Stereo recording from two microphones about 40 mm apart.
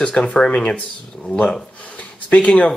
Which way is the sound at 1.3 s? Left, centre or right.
Centre.